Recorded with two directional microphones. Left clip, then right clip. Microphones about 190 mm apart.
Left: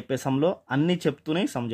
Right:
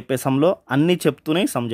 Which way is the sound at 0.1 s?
35° right (ahead or behind).